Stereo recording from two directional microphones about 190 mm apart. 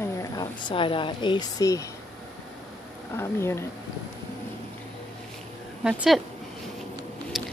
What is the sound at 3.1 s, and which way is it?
Speech, 15° left (ahead or behind).